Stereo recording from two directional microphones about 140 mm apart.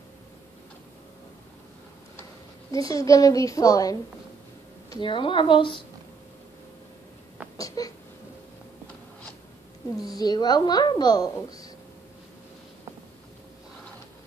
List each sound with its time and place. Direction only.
2.7 s a woman's voice: 25° left (ahead or behind)
5.0 s a woman's voice: 35° left (ahead or behind)
7.5 s a sound: 25° left (ahead or behind)
9.9 s a woman's voice: 25° left (ahead or behind)